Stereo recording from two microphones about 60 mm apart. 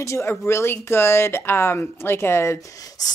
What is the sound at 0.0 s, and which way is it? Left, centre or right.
Speech, left.